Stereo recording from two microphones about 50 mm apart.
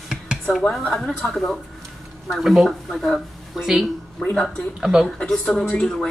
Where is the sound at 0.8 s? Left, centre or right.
Centre.